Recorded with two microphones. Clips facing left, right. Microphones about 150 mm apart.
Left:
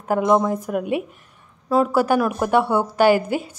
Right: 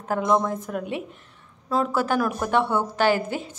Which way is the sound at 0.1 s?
10° left (ahead or behind).